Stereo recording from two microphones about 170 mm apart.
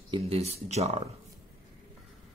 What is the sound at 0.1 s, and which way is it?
Speech, 35° right (ahead or behind).